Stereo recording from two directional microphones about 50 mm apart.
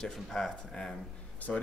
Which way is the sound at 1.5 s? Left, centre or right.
Left.